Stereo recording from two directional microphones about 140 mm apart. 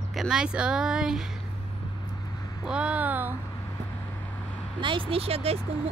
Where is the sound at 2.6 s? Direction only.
5° right (ahead or behind).